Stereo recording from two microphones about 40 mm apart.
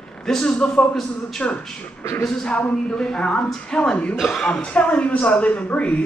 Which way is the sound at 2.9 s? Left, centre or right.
Centre.